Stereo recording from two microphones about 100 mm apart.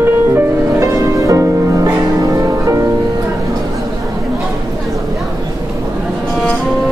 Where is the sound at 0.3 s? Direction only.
30° right (ahead or behind).